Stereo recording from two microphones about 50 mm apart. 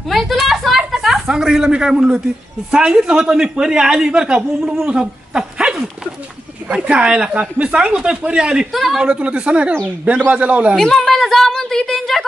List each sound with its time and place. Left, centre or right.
0.1 s a sound: centre
1.3 s speech: centre
6.8 s speech: right
9.0 s a woman's voice: right
10.8 s a woman's voice: centre